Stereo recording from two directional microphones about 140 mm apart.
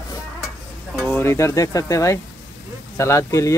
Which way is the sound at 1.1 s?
15° left (ahead or behind).